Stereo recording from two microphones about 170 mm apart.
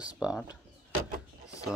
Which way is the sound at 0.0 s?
5° right (ahead or behind).